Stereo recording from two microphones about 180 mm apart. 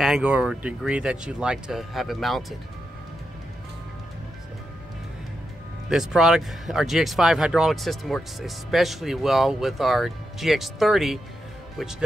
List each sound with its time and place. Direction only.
0.0 s speech: 5° right (ahead or behind)
5.9 s speech: centre (ahead or behind)